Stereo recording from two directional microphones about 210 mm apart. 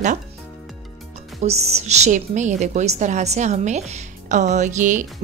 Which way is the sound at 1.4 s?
30° right (ahead or behind).